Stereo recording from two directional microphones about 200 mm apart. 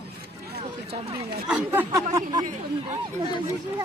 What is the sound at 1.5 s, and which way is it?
Speech, 10° right (ahead or behind).